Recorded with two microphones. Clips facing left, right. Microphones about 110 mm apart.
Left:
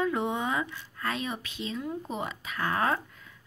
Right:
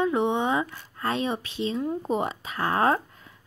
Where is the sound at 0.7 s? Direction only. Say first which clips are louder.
Right 5 dB; 30° right (ahead or behind).